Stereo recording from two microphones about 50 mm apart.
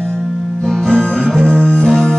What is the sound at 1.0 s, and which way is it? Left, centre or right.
Music, left.